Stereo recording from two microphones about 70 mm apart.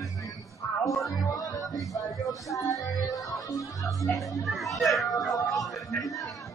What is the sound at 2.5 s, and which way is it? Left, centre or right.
Speech, left.